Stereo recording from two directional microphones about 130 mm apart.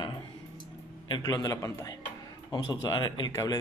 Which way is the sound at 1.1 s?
30° left (ahead or behind).